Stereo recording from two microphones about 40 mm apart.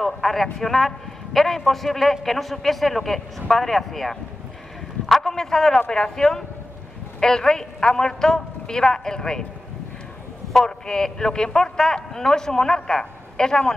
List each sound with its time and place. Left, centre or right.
0.0 s a man's voice: centre
5.0 s a sound: centre
5.9 s a man's voice: centre
10.5 s a man's voice: centre